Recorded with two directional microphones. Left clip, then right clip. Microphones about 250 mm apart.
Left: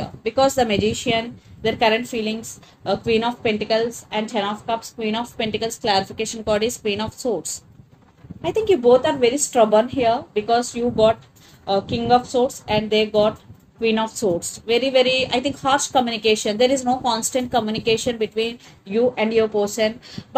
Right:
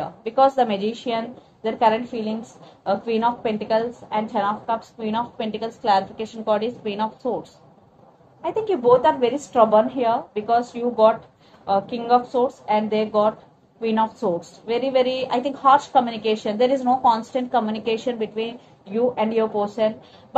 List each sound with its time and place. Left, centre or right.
0.0 s a woman's voice: left
8.4 s a woman's voice: left